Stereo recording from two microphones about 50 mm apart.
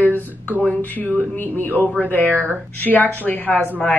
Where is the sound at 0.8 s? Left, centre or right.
Left.